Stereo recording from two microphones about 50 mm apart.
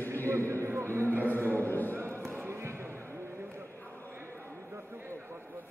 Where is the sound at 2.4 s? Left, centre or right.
Right.